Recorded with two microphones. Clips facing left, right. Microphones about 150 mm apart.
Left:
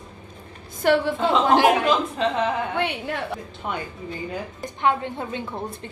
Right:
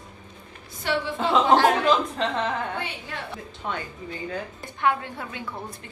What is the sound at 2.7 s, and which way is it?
Speech, 60° left (ahead or behind).